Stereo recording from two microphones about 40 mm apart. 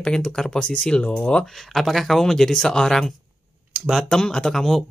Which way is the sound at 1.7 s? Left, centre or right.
Centre.